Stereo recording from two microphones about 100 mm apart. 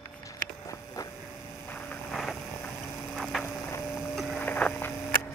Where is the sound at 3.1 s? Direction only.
Centre (ahead or behind).